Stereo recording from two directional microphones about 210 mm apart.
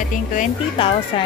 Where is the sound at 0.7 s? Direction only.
25° left (ahead or behind).